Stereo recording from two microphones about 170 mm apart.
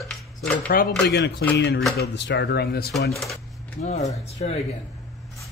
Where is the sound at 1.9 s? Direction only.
90° left; by 3.1 s 70° left (ahead or behind).